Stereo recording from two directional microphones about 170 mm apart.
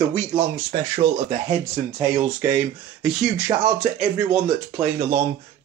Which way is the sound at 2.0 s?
10° right (ahead or behind).